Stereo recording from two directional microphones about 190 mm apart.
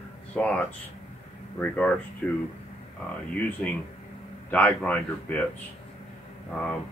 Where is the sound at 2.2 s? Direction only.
10° left (ahead or behind).